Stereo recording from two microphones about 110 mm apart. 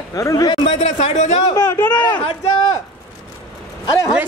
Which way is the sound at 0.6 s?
85° left.